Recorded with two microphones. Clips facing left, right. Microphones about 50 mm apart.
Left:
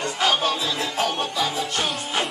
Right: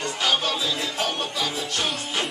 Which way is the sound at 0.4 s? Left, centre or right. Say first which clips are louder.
Left 2 dB; centre.